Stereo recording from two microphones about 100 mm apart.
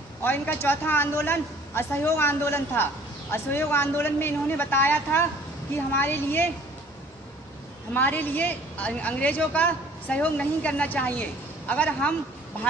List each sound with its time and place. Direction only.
0.2 s a woman's voice: 20° left (ahead or behind)
7.9 s a woman's voice: 20° left (ahead or behind)